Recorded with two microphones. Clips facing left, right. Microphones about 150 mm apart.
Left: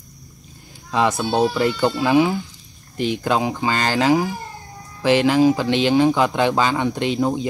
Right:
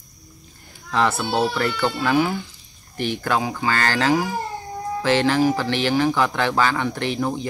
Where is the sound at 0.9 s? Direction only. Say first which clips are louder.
Left 2 dB; 15° left (ahead or behind).